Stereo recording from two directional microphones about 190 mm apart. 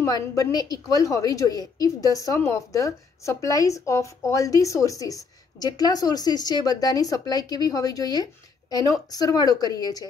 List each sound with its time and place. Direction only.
0.0 s a woman's voice: 15° left (ahead or behind)